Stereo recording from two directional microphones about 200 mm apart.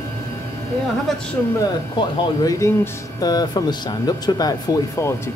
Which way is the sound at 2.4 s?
15° left (ahead or behind).